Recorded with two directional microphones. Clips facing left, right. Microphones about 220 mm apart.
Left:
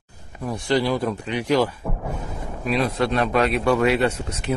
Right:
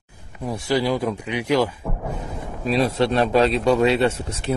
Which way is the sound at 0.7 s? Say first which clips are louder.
Even; 10° right (ahead or behind).